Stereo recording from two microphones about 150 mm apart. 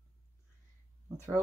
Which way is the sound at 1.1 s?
20° right (ahead or behind).